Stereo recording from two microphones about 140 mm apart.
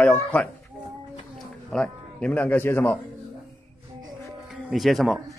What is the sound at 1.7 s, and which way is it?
A man's voice, 5° left (ahead or behind).